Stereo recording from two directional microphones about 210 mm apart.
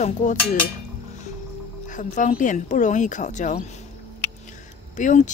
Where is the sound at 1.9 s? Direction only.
35° left (ahead or behind).